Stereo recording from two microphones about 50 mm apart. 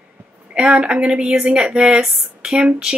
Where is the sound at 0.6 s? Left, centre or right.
Right.